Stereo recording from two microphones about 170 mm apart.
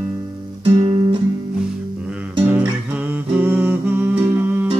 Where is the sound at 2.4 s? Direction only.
10° right (ahead or behind).